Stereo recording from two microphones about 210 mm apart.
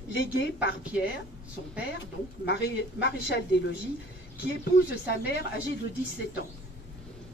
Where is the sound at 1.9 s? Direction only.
55° left (ahead or behind).